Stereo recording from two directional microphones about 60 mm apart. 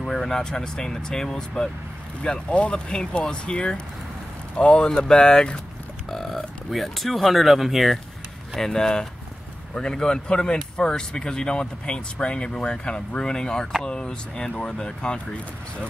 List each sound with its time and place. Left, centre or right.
0.0 s speech: centre
6.0 s speech: centre